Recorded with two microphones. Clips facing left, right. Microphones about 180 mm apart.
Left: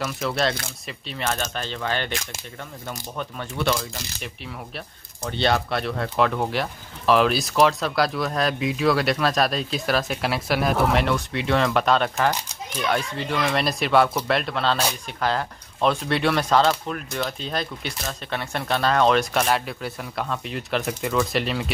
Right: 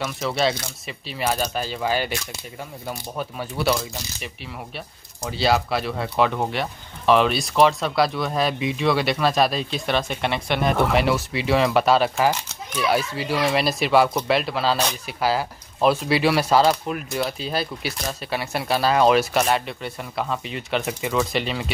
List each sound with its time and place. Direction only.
0.0 s speech: centre (ahead or behind)